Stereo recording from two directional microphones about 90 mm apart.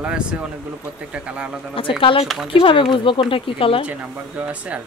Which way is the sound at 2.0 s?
75° left (ahead or behind).